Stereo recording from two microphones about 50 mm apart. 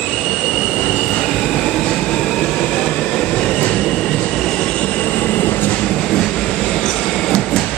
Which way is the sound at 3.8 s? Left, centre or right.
Centre.